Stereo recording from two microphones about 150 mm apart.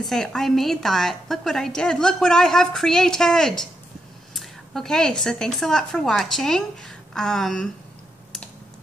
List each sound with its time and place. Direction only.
0.0 s a woman's voice: 5° left (ahead or behind)